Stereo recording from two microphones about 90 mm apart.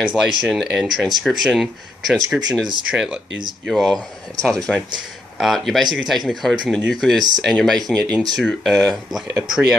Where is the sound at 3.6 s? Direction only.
5° left (ahead or behind).